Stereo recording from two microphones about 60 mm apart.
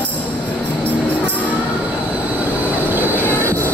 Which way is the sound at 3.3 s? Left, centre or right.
Left.